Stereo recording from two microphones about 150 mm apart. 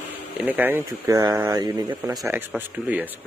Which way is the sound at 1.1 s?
25° right (ahead or behind).